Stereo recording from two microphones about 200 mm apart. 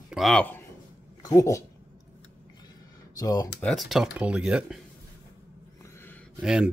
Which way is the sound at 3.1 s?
15° left (ahead or behind).